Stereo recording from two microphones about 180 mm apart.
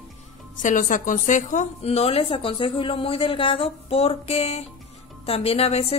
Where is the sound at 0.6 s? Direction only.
45° left (ahead or behind).